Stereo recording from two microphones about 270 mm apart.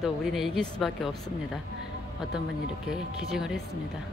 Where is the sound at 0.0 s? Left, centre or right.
Centre.